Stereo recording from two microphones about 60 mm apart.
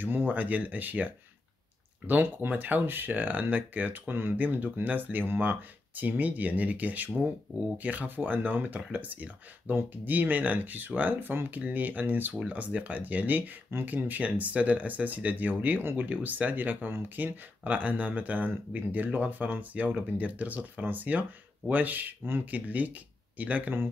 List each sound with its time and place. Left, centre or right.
0.0 s speech: right
15.8 s speech: right
16.1 s speech: right
22.5 s speech: right